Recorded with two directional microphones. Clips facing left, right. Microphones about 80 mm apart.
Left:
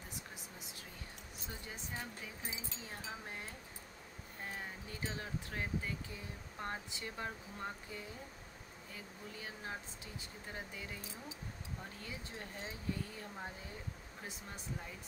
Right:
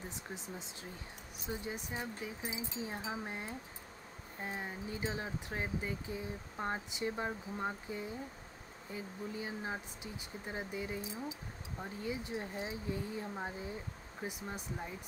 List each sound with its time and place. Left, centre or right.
0.1 s speech: right